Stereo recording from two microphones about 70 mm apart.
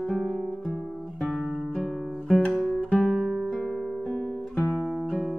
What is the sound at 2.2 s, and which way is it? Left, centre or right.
Guitar, centre.